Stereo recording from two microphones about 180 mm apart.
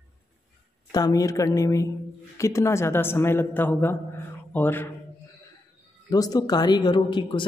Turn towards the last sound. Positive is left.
turn(degrees=25)  # may be behind; listen again after turning